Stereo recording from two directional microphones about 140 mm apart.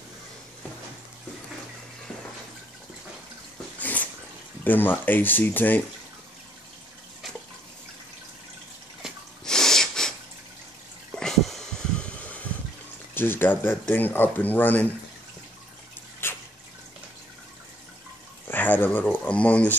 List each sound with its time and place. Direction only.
3.8 s dog: 10° left (ahead or behind)
4.6 s speech: 15° left (ahead or behind)
9.0 s snort: 5° left (ahead or behind)
11.1 s a sound: centre (ahead or behind)
13.1 s speech: 15° left (ahead or behind)
16.2 s drip: 15° left (ahead or behind)
18.5 s speech: 15° left (ahead or behind)